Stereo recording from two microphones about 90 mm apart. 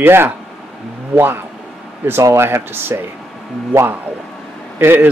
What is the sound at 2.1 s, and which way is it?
Speech, 30° right (ahead or behind).